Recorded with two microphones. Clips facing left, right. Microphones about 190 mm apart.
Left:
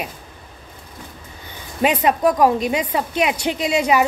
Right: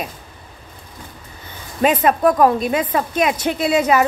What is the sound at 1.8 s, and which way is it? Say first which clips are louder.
Speech: right 2 dB; 15° left (ahead or behind).